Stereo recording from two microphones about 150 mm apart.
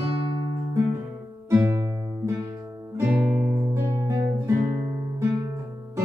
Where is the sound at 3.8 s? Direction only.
20° right (ahead or behind).